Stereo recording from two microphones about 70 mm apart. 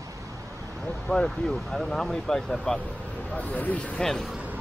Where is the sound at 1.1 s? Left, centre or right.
Centre.